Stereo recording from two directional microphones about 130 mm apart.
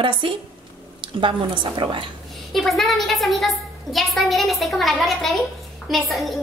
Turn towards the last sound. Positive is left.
turn(degrees=0)  # may be behind; listen again after turning